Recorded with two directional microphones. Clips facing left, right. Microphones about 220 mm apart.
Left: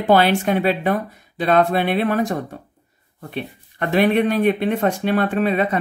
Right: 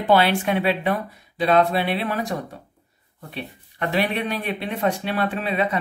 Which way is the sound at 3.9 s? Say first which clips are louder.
Left 8 dB; 50° left (ahead or behind).